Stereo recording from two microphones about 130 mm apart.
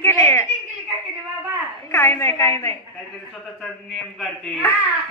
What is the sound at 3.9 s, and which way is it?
Speech, centre (ahead or behind).